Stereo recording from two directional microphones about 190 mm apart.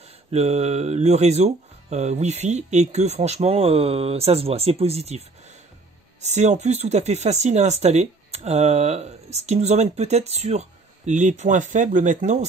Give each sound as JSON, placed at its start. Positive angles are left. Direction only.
{"t": 0.3, "sound": "speech", "side_deg": -35}
{"t": 6.2, "sound": "speech", "side_deg": -35}